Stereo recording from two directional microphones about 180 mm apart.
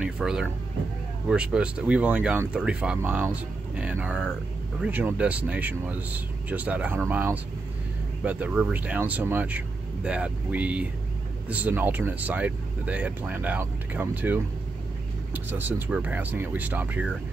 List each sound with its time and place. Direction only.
0.0 s speech: 5° right (ahead or behind)